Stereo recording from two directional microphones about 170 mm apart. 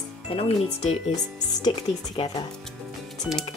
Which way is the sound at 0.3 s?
35° left (ahead or behind).